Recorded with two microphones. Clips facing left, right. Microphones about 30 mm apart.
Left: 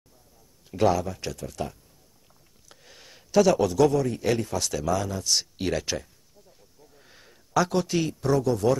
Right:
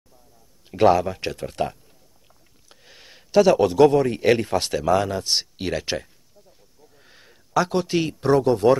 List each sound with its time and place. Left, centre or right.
0.7 s speech: right
2.7 s a man's voice: centre; by 5.4 s right
5.4 s speech: centre
6.8 s a sound: centre; by 8.7 s right